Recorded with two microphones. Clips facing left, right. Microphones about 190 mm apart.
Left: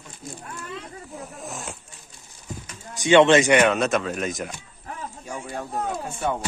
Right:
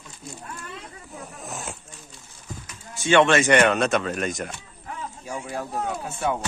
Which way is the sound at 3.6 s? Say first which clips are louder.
Even; centre (ahead or behind).